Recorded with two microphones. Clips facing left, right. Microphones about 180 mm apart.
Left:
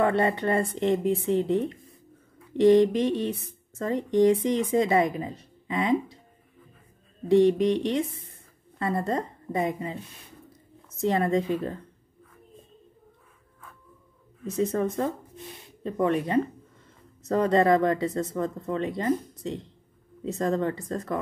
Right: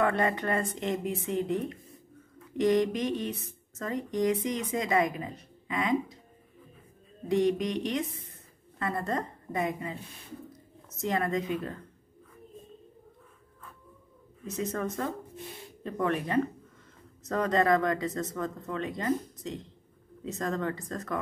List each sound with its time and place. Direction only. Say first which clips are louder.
0.0 s speech: left 4 dB; 30° left (ahead or behind)
7.2 s a woman's voice: left 7 dB; 25° left (ahead or behind)
11.0 s speech: left 5 dB; 30° left (ahead or behind)
14.6 s speech: left 6 dB; 30° left (ahead or behind)